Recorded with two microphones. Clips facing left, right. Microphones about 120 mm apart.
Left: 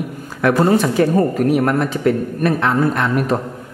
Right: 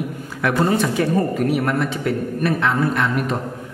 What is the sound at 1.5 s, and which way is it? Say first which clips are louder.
A man's voice: left 4 dB; 45° left (ahead or behind).